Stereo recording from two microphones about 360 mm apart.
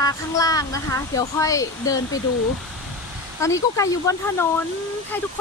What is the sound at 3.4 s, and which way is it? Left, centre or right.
Speech, centre.